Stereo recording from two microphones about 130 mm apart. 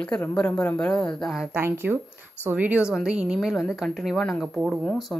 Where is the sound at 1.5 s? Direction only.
15° right (ahead or behind).